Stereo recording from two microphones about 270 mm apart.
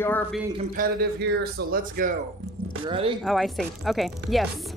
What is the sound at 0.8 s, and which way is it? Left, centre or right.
Speech, right.